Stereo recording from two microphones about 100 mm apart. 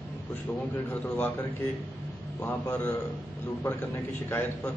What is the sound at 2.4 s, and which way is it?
A man's voice, 20° left (ahead or behind).